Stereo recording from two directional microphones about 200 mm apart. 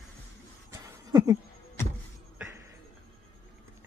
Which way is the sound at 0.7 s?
15° right (ahead or behind).